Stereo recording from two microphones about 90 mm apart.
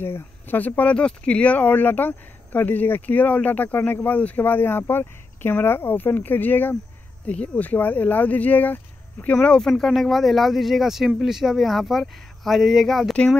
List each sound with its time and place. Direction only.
0.0 s speech: 25° left (ahead or behind)
9.7 s speech: centre (ahead or behind)